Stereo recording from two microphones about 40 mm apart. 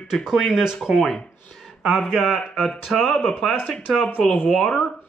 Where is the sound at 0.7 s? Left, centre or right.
Centre.